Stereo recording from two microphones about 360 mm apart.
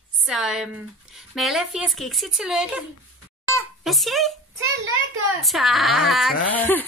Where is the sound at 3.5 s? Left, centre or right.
Centre.